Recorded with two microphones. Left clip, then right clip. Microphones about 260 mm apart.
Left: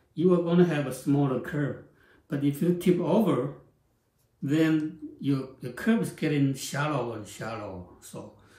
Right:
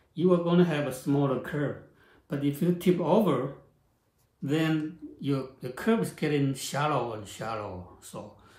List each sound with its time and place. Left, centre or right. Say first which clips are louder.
0.1 s speech: left 1 dB; centre
4.4 s speech: left 3 dB; centre